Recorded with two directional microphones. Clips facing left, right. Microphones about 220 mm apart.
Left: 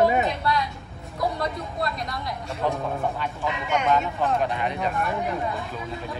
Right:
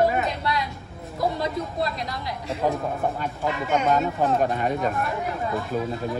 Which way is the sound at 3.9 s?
45° right (ahead or behind).